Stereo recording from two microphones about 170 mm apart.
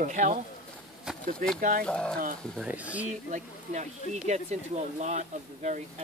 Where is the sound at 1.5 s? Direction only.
50° right (ahead or behind).